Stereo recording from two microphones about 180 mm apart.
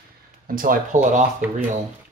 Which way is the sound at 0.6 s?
45° right (ahead or behind).